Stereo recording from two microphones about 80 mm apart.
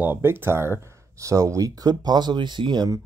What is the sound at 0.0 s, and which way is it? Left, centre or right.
Speech, right.